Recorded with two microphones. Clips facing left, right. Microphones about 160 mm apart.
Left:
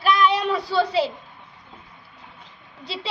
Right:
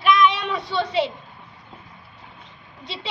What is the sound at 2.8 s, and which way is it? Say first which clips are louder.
Speech: left 2 dB; 35° left (ahead or behind).